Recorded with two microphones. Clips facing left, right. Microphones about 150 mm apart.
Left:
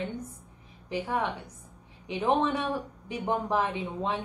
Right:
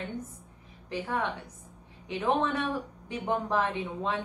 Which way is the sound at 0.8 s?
10° left (ahead or behind).